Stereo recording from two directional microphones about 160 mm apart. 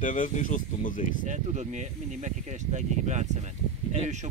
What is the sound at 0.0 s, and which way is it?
Speech, 55° left (ahead or behind).